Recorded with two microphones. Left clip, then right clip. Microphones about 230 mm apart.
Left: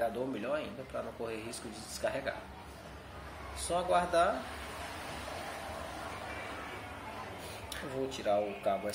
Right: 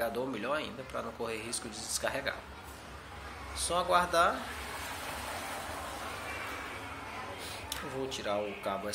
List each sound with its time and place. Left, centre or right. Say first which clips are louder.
0.0 s speech: right 1 dB; centre
2.0 s speech: right 1 dB; centre
3.5 s speech: right 2 dB; centre
7.7 s speech: even; centre